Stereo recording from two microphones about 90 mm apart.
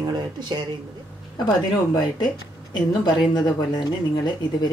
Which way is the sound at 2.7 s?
55° left (ahead or behind).